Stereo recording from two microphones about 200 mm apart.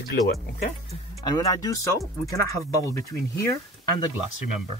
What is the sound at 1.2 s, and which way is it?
Speech, 20° left (ahead or behind).